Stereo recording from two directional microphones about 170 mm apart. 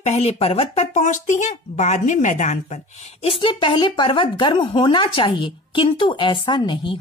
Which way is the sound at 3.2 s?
30° left (ahead or behind).